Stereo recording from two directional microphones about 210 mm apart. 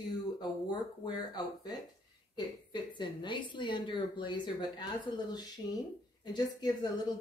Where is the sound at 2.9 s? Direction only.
20° left (ahead or behind).